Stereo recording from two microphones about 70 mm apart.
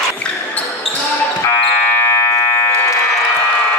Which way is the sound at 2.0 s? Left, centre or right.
Left.